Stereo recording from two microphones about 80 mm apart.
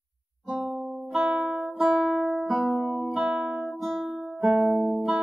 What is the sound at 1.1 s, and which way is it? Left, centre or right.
Music, centre.